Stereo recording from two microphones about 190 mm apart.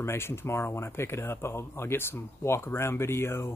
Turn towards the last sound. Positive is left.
turn(degrees=15)  # may be behind; listen again after turning